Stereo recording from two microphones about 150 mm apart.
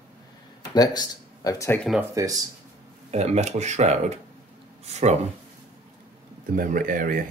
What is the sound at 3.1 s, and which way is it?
Speech, 45° right (ahead or behind).